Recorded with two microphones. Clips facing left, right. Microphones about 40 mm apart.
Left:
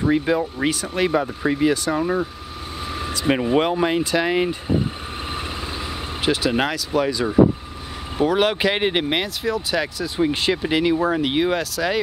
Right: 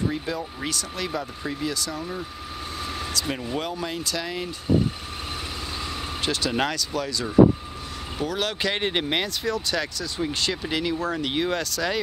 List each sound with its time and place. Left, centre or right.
0.0 s speech: left
3.0 s vehicle: left
3.5 s speech: left
6.2 s speech: centre